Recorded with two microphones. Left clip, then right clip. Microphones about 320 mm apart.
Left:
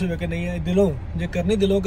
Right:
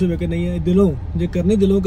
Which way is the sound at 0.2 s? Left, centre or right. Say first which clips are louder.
Right 5 dB; centre.